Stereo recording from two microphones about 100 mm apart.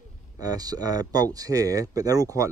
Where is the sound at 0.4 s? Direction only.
40° right (ahead or behind).